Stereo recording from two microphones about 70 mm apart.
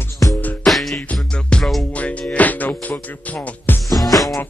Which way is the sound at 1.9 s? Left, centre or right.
Centre.